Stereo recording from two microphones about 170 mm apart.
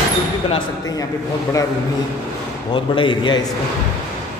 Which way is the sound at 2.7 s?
30° left (ahead or behind).